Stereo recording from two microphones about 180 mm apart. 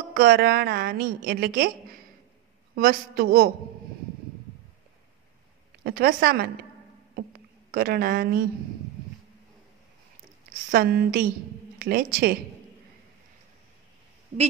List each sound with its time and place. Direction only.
0.1 s a woman's voice: 60° right (ahead or behind)
2.7 s a woman's voice: 55° right (ahead or behind)
5.9 s a woman's voice: 60° right (ahead or behind)
7.7 s a woman's voice: 60° right (ahead or behind)
10.7 s a woman's voice: 55° right (ahead or behind)